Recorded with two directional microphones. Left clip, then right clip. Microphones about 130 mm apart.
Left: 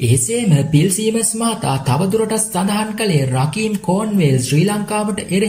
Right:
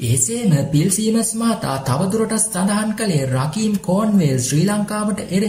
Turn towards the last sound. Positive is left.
turn(degrees=20)  # may be behind; listen again after turning